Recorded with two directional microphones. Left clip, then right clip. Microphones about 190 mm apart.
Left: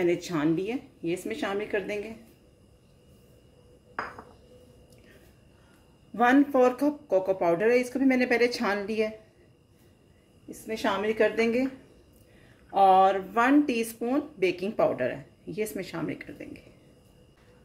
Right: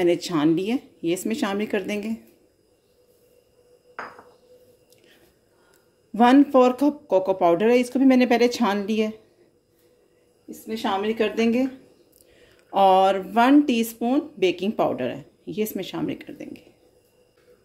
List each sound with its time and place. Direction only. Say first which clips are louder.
0.0 s speech: right 6 dB; 40° right (ahead or behind)
6.1 s speech: right 6 dB; 40° right (ahead or behind)
10.7 s speech: right 3 dB; 20° right (ahead or behind)
12.7 s speech: right 3 dB; 45° right (ahead or behind)